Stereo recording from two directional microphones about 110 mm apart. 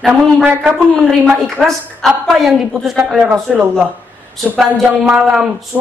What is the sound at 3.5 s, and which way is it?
Speech, 10° right (ahead or behind).